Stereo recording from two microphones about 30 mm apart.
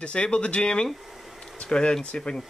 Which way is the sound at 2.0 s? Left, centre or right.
Left.